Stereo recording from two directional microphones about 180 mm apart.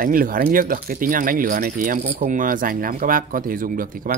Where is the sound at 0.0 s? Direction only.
50° right (ahead or behind).